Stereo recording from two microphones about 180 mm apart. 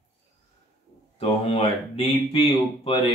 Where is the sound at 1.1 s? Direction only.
30° left (ahead or behind).